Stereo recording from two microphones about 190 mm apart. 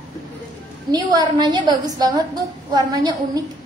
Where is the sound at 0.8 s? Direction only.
20° right (ahead or behind).